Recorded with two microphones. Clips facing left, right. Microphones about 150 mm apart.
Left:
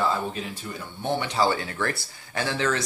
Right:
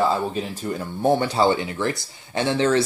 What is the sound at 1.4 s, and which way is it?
Speech, 20° right (ahead or behind).